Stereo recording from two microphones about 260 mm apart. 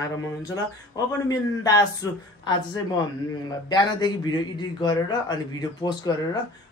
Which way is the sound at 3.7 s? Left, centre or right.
Centre.